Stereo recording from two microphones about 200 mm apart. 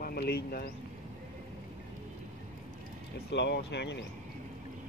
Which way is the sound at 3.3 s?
60° left (ahead or behind).